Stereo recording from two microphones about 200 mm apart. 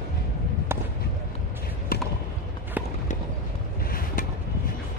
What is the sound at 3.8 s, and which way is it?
Boat, 45° left (ahead or behind).